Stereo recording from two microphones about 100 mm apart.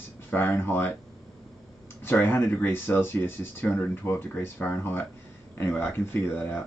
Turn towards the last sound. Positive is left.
turn(degrees=20)  # may be behind; listen again after turning